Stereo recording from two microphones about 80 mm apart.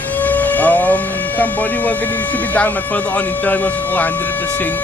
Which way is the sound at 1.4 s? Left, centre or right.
Centre.